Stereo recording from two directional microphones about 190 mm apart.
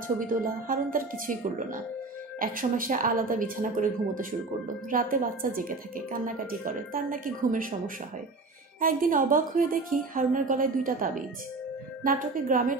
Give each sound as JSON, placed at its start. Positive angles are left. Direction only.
{"t": 0.3, "sound": "a woman's voice", "side_deg": -45}